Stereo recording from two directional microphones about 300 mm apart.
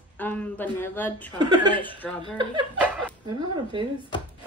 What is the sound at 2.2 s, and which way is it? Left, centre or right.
Speech, centre.